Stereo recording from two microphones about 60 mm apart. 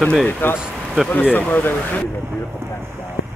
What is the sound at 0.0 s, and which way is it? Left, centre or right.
Speech, centre.